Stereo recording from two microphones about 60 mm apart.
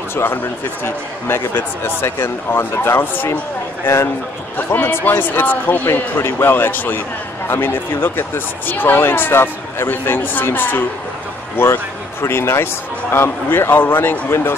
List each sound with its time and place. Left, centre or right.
0.1 s speech: left
4.7 s speech: left